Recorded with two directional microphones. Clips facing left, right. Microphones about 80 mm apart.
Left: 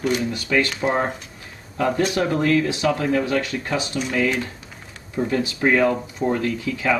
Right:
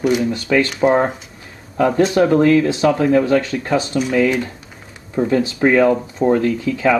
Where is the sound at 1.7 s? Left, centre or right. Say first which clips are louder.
Right 6 dB; right.